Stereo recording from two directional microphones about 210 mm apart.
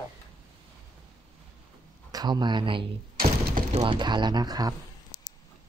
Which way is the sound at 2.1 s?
20° right (ahead or behind).